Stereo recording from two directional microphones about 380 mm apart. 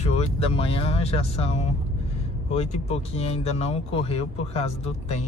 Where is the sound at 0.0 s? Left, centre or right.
Centre.